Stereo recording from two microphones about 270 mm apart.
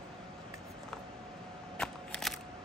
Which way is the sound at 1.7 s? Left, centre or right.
Centre.